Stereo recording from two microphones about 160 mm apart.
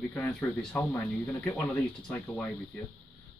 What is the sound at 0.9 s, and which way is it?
Speech, 20° left (ahead or behind).